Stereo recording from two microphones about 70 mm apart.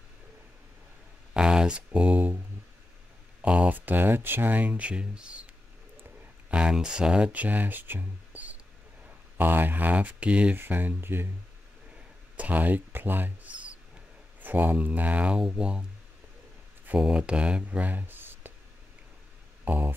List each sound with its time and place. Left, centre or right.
1.3 s speech: centre
3.4 s speech: centre
6.5 s speech: centre
10.6 s speech: right
12.4 s speech: right
17.0 s speech: centre
19.6 s speech: right